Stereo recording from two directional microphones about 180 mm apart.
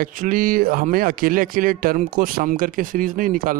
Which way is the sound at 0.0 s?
50° right (ahead or behind).